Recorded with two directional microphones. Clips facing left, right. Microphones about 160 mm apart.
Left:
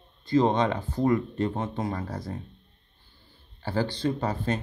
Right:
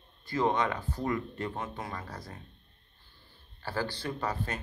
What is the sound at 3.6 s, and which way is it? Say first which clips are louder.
Speech: left 6 dB; 20° left (ahead or behind).